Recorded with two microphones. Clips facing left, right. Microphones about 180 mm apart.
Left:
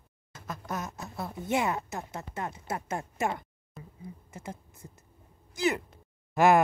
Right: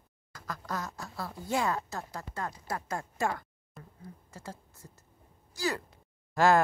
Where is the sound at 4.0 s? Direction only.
20° left (ahead or behind).